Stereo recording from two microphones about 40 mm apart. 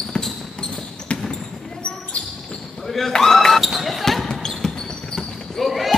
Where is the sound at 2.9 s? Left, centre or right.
Centre.